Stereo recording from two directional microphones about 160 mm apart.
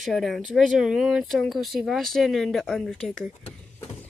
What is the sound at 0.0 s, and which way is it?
Speech, centre (ahead or behind).